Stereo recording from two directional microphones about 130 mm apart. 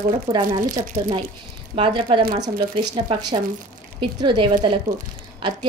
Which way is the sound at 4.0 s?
35° right (ahead or behind).